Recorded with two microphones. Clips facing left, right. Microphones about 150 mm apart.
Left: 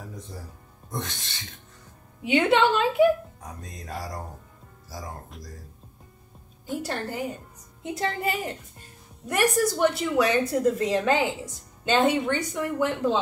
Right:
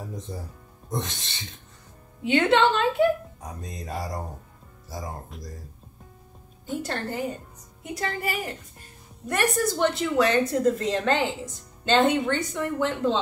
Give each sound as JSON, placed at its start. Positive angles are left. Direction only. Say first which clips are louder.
{"t": 0.8, "sound": "speech", "louder": "right 3 dB", "side_deg": -20}
{"t": 2.2, "sound": "a woman's voice", "louder": "right 1 dB", "side_deg": 15}
{"t": 3.6, "sound": "music", "louder": "right 4 dB", "side_deg": -25}
{"t": 5.3, "sound": "speech", "louder": "right 3 dB", "side_deg": 0}
{"t": 6.8, "sound": "a woman's voice", "louder": "right 1 dB", "side_deg": 10}
{"t": 7.8, "sound": "a woman's voice", "louder": "left 2 dB", "side_deg": 25}
{"t": 9.3, "sound": "a woman's voice", "louder": "left 2 dB", "side_deg": 10}